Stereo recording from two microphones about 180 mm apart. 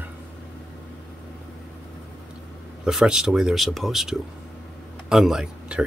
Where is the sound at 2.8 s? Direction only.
5° right (ahead or behind).